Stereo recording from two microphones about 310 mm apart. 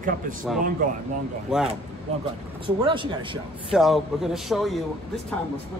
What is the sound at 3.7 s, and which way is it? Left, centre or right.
Speech, centre.